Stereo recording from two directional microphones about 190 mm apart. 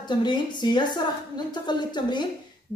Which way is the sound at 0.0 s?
25° left (ahead or behind).